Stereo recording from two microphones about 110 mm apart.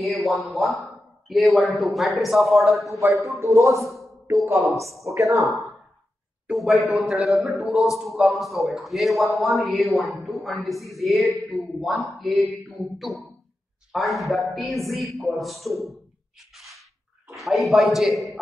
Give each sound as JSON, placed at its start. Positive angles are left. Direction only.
{"t": 0.0, "sound": "a man's voice", "side_deg": 0}
{"t": 3.3, "sound": "speech", "side_deg": -30}
{"t": 3.8, "sound": "speech", "side_deg": 0}
{"t": 5.0, "sound": "speech", "side_deg": -30}
{"t": 5.4, "sound": "a man's voice", "side_deg": 0}
{"t": 16.5, "sound": "a sound", "side_deg": 0}
{"t": 17.4, "sound": "a man's voice", "side_deg": 0}